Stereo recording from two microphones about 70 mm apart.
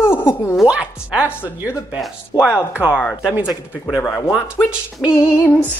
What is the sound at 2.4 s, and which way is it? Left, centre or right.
Speech, centre.